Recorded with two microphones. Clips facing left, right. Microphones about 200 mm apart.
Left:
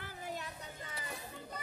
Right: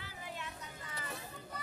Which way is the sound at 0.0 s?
45° left (ahead or behind).